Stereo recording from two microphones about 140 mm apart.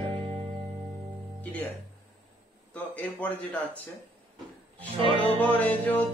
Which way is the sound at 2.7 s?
10° left (ahead or behind).